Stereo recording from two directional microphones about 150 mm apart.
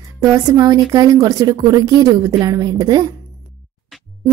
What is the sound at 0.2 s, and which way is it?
A woman's voice, 25° right (ahead or behind).